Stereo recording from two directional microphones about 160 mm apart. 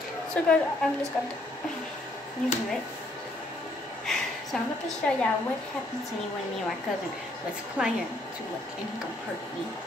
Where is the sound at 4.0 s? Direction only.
Centre (ahead or behind).